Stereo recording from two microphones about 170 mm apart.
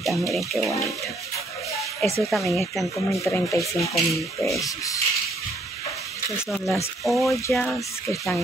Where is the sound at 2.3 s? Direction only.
Centre (ahead or behind).